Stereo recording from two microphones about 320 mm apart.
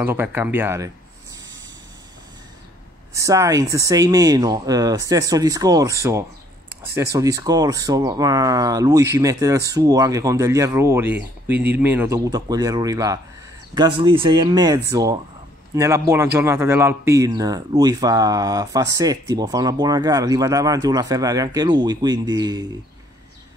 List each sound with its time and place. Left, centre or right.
0.0 s speech: centre
3.2 s speech: centre